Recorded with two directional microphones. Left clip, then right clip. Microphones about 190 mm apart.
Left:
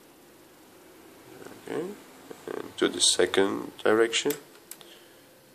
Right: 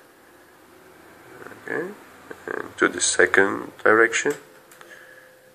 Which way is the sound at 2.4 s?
25° left (ahead or behind).